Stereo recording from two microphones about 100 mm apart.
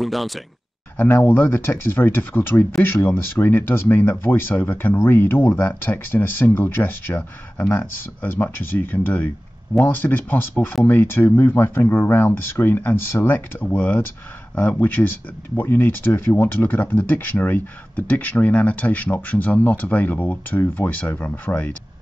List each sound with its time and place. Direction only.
0.0 s speech: centre (ahead or behind)
0.9 s speech: 20° left (ahead or behind)